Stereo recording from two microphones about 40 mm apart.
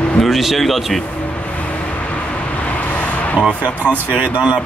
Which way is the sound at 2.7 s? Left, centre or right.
Left.